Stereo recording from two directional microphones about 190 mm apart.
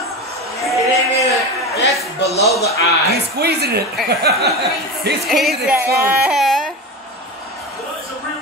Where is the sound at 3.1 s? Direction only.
60° right (ahead or behind).